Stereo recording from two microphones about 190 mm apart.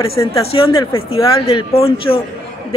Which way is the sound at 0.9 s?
30° left (ahead or behind).